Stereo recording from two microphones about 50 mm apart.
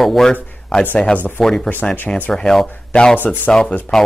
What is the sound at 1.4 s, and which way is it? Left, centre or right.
Speech, centre.